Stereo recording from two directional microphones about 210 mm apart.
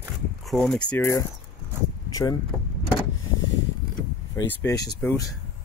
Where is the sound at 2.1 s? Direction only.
15° left (ahead or behind).